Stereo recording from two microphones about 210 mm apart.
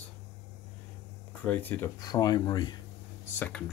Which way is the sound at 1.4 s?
10° left (ahead or behind).